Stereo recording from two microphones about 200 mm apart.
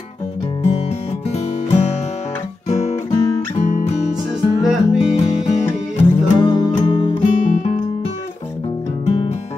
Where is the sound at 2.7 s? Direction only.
30° left (ahead or behind).